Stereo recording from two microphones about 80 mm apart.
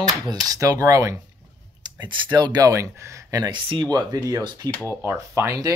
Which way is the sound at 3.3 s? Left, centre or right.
Right.